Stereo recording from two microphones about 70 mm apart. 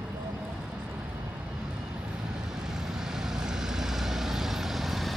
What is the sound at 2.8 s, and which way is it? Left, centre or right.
Vehicle, centre.